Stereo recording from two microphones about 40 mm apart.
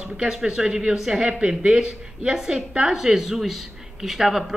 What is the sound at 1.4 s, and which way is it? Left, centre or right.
Speech, right.